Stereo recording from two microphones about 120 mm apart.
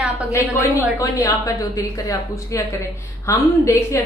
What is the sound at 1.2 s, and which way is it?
A woman's voice, 25° left (ahead or behind).